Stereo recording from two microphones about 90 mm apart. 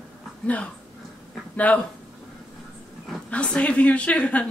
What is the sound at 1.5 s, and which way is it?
Speech, 15° left (ahead or behind).